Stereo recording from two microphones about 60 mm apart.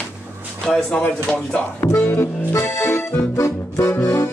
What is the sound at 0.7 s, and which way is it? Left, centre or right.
Speech, centre.